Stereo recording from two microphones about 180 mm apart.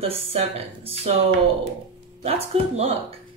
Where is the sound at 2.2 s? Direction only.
35° right (ahead or behind).